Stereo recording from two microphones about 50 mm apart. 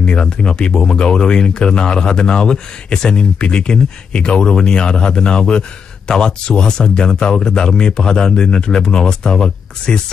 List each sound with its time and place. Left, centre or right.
0.0 s speech: centre